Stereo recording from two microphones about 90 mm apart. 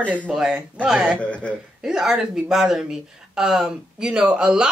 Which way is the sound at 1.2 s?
15° left (ahead or behind).